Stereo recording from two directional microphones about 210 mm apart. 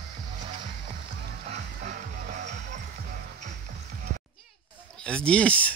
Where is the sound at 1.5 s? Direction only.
35° right (ahead or behind).